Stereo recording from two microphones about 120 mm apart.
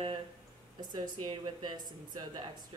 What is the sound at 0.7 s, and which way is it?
Speech, 35° right (ahead or behind).